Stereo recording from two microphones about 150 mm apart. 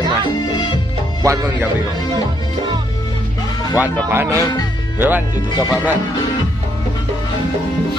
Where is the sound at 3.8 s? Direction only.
15° right (ahead or behind).